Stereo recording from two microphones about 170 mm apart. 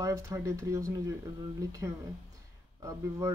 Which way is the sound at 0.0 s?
20° right (ahead or behind).